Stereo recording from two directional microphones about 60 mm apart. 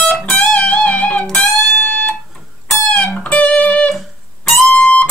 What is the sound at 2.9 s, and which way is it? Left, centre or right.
Music, centre.